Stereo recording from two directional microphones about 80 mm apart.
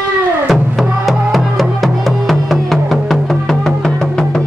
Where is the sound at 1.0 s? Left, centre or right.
Centre.